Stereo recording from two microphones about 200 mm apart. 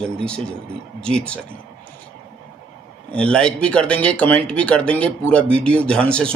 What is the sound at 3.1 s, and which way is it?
Speech, 5° left (ahead or behind).